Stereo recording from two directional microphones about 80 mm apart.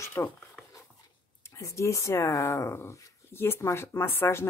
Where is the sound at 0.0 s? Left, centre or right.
Left.